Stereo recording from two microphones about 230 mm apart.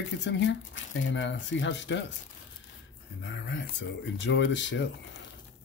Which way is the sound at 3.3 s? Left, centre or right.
Left.